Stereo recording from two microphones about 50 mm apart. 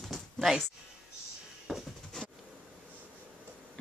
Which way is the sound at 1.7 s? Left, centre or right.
Centre.